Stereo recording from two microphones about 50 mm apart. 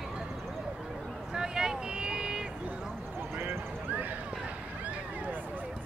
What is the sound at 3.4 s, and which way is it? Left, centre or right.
Horse, right.